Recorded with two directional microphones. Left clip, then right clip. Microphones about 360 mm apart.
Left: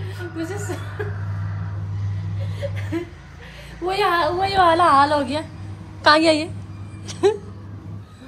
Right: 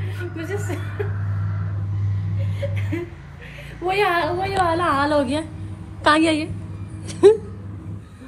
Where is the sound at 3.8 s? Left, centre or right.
Centre.